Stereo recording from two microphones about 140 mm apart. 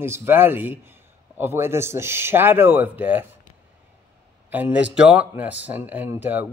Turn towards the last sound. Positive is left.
turn(degrees=-15)  # may be behind; listen again after turning